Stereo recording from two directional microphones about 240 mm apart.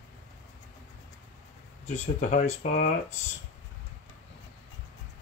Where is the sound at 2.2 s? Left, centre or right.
Left.